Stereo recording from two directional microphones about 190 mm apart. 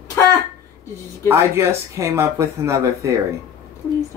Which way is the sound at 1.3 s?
15° right (ahead or behind).